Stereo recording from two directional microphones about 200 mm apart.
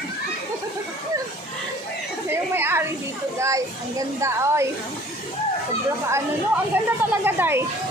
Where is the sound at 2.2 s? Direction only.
10° right (ahead or behind).